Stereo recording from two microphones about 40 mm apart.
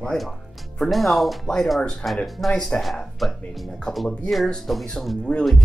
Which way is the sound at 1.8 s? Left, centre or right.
Left.